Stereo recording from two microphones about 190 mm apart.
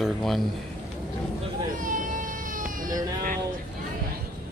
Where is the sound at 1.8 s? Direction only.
45° right (ahead or behind).